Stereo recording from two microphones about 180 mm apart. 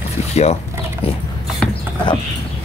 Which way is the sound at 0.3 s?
35° left (ahead or behind).